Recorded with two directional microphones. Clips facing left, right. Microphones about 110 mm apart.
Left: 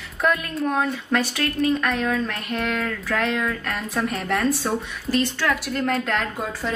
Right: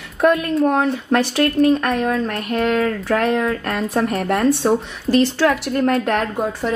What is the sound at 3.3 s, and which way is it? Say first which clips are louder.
Speech: right 6 dB; 30° right (ahead or behind).